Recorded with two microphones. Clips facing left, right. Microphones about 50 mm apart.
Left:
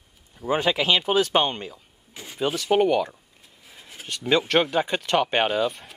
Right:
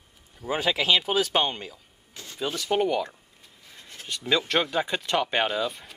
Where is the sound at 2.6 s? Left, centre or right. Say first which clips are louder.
Left 4 dB; centre.